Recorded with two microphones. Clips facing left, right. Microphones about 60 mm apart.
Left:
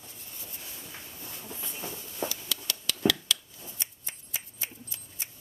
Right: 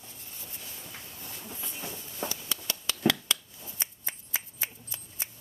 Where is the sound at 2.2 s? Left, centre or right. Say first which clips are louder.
Even; right.